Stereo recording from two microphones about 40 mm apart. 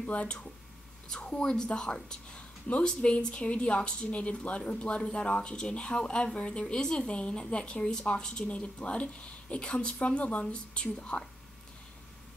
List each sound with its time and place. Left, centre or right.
0.1 s speech: left
1.0 s a woman's voice: centre